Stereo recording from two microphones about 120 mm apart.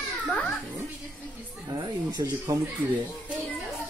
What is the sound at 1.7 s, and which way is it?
Speech, 35° right (ahead or behind).